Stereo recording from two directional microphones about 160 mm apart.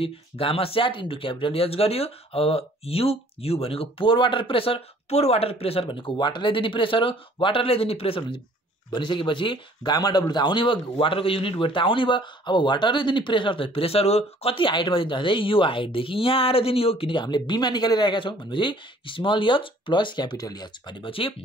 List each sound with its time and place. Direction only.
0.0 s speech: 35° left (ahead or behind)